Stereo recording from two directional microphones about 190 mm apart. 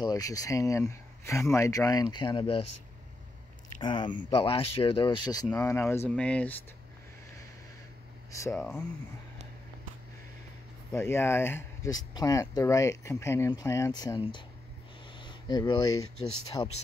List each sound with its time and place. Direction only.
0.0 s speech: 20° left (ahead or behind)
3.8 s speech: 25° left (ahead or behind); by 6.5 s 5° left (ahead or behind)
8.3 s speech: 15° left (ahead or behind)
8.5 s speech: 5° left (ahead or behind)
10.9 s speech: 10° left (ahead or behind)
15.1 s a sound: 25° left (ahead or behind)
16.6 s speech: 20° left (ahead or behind)